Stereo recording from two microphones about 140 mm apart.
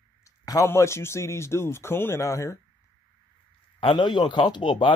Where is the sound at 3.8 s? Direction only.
35° left (ahead or behind).